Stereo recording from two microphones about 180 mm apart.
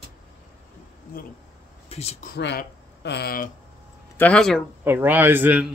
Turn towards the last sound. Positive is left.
turn(degrees=-10)  # may be behind; listen again after turning